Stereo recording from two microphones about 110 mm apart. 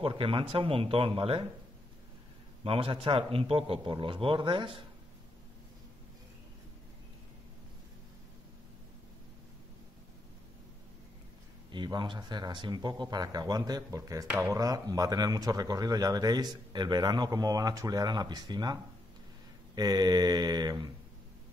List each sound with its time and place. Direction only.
0.0 s speech: 55° right (ahead or behind)
2.6 s speech: 55° right (ahead or behind)
11.7 s speech: 45° right (ahead or behind)